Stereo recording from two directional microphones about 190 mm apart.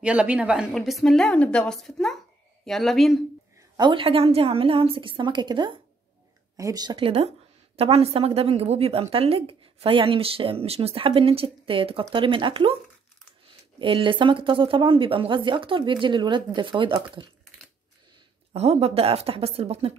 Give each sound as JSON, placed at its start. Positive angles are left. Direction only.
{"t": 0.0, "sound": "a woman's voice", "side_deg": -5}
{"t": 3.7, "sound": "a woman's voice", "side_deg": -25}
{"t": 13.7, "sound": "a woman's voice", "side_deg": -25}
{"t": 18.5, "sound": "a woman's voice", "side_deg": -30}